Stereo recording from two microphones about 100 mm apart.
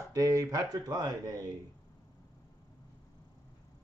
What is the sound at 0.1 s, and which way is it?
Speech, 35° right (ahead or behind).